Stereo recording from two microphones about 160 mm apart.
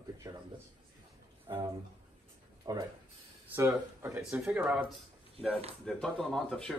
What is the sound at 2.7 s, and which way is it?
Speech, 25° right (ahead or behind).